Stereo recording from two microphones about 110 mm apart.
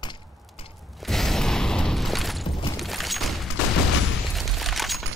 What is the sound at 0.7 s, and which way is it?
Shatter, centre (ahead or behind).